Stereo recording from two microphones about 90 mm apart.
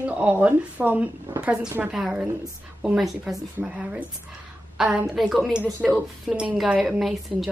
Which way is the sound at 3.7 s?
10° right (ahead or behind).